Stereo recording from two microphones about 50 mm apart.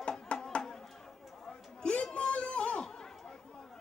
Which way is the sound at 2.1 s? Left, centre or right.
Left.